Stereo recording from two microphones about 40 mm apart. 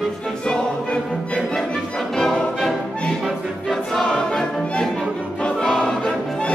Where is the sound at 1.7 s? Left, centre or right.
Centre.